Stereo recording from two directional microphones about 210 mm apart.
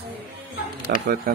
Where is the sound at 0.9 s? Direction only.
50° right (ahead or behind).